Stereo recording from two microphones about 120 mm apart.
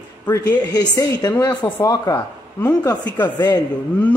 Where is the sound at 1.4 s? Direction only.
30° left (ahead or behind).